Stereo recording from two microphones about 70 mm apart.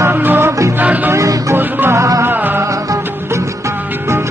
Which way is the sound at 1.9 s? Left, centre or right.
Right.